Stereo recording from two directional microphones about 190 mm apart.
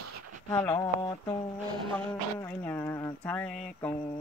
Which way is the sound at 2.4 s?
10° left (ahead or behind).